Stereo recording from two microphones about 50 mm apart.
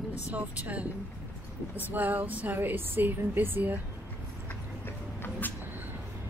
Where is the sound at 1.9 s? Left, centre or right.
Right.